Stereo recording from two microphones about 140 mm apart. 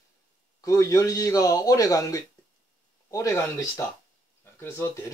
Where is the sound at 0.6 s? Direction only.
25° left (ahead or behind).